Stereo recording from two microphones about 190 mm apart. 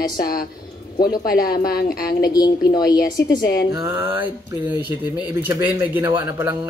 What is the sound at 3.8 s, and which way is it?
A man's voice, 10° right (ahead or behind).